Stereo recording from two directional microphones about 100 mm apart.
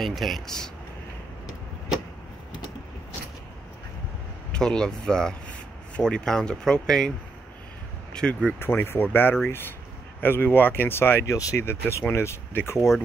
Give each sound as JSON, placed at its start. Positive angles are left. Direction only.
{"t": 0.0, "sound": "speech", "side_deg": 0}
{"t": 4.5, "sound": "speech", "side_deg": 10}
{"t": 8.1, "sound": "speech", "side_deg": 5}
{"t": 8.5, "sound": "speech", "side_deg": 20}